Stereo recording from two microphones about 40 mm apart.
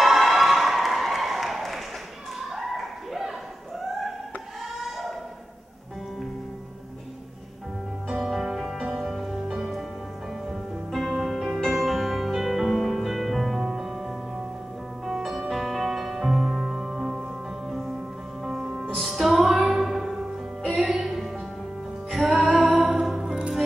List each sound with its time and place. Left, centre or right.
0.0 s a sound: centre
8.1 s music: centre
13.6 s music: centre